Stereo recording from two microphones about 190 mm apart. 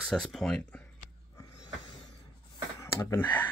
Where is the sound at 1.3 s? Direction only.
20° left (ahead or behind).